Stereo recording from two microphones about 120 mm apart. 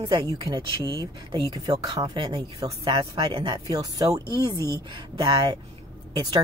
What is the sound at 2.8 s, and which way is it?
Speech, 50° right (ahead or behind).